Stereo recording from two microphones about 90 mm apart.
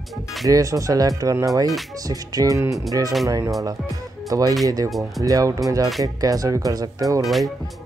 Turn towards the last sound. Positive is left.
turn(degrees=0)  # may be behind; listen again after turning